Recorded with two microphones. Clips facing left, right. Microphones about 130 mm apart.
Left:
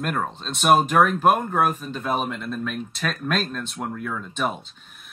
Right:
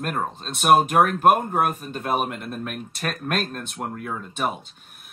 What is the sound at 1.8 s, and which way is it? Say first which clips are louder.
Speech: right 1 dB; 50° right (ahead or behind).